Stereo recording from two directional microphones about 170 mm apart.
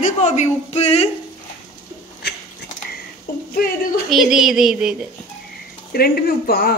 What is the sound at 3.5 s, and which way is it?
Speech, 65° left (ahead or behind).